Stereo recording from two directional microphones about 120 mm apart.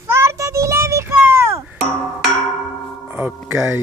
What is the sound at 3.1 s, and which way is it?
Music, 10° right (ahead or behind).